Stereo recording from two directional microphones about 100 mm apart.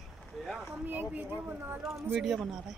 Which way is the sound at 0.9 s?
15° right (ahead or behind).